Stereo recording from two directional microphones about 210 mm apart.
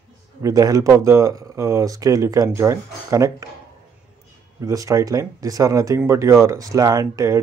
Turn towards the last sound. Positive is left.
turn(degrees=-15)  # may be behind; listen again after turning